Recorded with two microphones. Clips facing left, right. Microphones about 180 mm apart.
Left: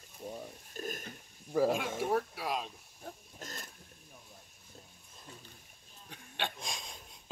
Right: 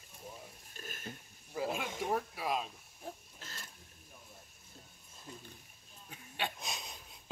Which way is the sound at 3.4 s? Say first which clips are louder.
Left 6 dB; 45° left (ahead or behind).